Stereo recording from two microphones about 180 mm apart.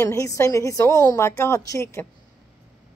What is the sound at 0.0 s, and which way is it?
A woman's voice, 15° left (ahead or behind).